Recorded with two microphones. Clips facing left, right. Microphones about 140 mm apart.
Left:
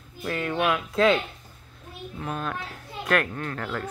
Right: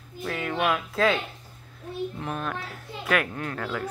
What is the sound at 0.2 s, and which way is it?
Speech, centre (ahead or behind).